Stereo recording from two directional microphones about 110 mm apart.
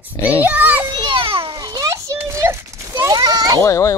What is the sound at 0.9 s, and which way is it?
Children playing, 45° right (ahead or behind).